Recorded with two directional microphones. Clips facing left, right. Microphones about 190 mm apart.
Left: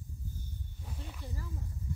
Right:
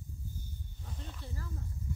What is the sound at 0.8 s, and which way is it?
Speech, 10° left (ahead or behind).